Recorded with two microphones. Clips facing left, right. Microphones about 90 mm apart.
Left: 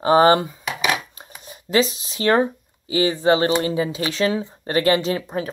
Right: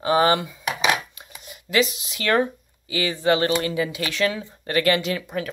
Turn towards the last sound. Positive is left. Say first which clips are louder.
# left 3 dB
turn(degrees=30)  # may be behind; listen again after turning